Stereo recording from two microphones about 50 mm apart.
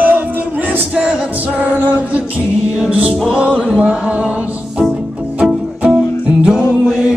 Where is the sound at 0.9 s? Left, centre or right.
Centre.